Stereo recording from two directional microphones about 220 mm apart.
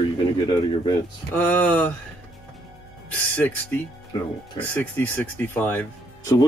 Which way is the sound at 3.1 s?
5° left (ahead or behind).